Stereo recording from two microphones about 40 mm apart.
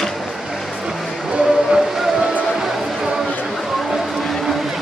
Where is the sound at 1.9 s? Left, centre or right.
Centre.